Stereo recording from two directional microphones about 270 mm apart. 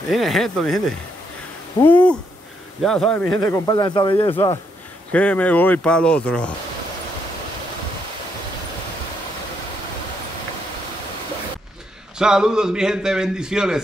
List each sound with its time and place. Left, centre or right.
0.1 s a man's voice: centre
5.1 s a man's voice: centre
12.2 s a man's voice: centre